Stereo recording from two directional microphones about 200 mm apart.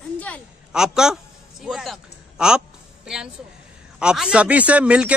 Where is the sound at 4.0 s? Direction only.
5° right (ahead or behind).